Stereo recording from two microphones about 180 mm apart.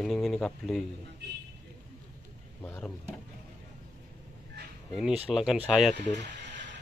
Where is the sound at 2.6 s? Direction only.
10° left (ahead or behind).